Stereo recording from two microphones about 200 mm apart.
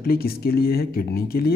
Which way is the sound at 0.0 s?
50° left (ahead or behind).